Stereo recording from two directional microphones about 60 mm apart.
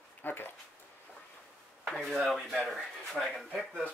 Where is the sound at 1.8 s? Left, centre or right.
Centre.